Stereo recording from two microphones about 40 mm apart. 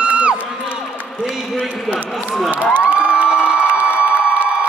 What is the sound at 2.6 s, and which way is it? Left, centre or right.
Cheering, left.